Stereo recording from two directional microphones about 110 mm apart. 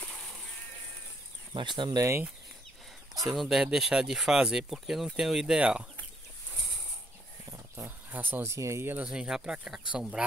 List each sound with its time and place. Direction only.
1.5 s speech: 45° right (ahead or behind)
2.0 s speech: 25° right (ahead or behind)
3.3 s speech: centre (ahead or behind)
7.7 s speech: 20° right (ahead or behind)
9.0 s speech: 10° right (ahead or behind)